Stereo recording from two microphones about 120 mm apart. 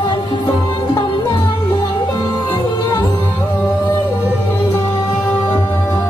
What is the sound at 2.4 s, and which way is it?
Music, 15° left (ahead or behind).